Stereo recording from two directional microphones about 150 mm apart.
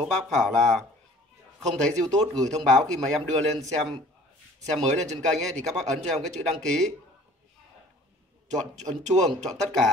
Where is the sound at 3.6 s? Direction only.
40° right (ahead or behind).